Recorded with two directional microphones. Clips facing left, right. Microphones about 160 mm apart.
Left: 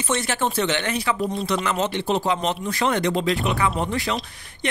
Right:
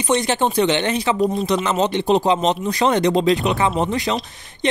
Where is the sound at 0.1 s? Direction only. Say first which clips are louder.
Right 6 dB; 20° right (ahead or behind).